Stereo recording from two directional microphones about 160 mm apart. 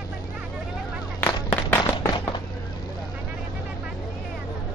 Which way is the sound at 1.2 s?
15° left (ahead or behind).